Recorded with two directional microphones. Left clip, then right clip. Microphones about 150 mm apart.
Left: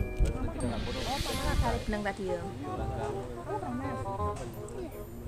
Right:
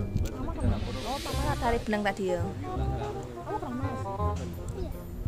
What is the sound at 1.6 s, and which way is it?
Speech, 70° right (ahead or behind).